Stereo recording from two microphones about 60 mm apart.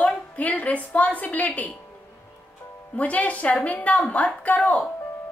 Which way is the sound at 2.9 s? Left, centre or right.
Left.